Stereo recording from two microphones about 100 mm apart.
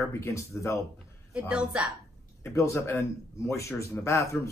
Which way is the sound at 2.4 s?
25° left (ahead or behind).